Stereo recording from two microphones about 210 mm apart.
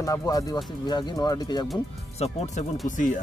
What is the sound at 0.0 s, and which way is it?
Speech, 15° left (ahead or behind).